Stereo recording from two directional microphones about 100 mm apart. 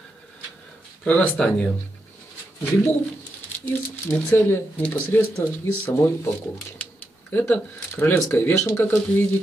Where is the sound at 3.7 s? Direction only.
20° left (ahead or behind).